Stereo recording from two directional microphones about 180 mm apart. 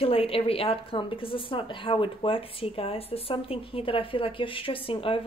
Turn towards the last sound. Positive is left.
turn(degrees=30)  # may be behind; listen again after turning